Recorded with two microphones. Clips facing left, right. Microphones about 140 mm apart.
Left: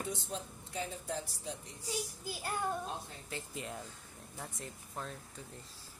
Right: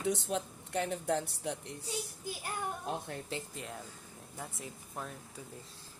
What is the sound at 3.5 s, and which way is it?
Speech, centre (ahead or behind).